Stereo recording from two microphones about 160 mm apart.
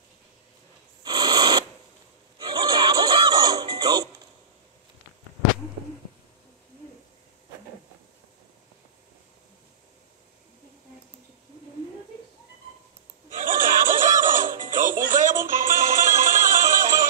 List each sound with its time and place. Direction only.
1.0 s a sound: 25° right (ahead or behind)
2.5 s music: 20° right (ahead or behind)
13.3 s music: 60° right (ahead or behind)